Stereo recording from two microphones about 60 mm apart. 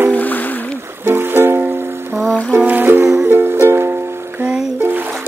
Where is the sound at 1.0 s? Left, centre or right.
Right.